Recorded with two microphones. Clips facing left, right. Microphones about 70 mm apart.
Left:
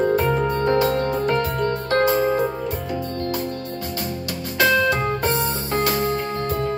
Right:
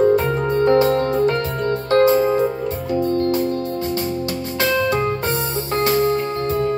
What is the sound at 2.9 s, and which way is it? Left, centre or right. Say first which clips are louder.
Music: right 7 dB; right.